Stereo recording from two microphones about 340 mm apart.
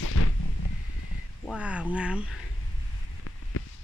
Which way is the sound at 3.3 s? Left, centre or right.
Left.